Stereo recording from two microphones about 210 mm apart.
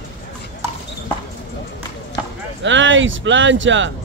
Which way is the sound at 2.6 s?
60° right (ahead or behind).